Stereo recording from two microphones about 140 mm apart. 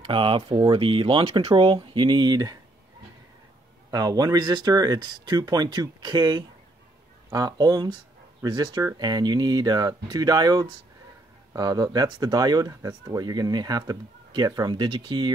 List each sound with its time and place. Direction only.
0.0 s speech: 40° right (ahead or behind)
3.9 s speech: 25° right (ahead or behind)